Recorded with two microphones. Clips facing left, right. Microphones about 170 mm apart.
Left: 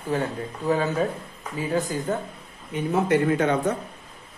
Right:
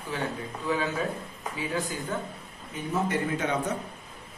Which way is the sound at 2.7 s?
65° left (ahead or behind).